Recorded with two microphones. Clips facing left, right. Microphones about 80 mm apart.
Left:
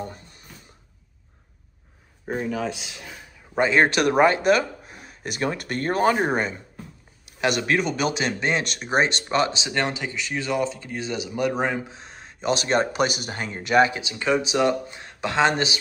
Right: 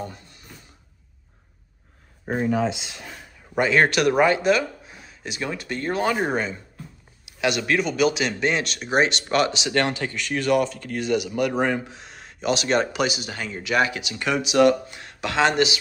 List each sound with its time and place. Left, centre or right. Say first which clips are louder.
2.2 s speech: right 4 dB; centre
3.5 s speech: even; left
4.2 s speech: left 2 dB; left
7.3 s speech: even; left
9.7 s speech: right 3 dB; centre
12.4 s speech: even; left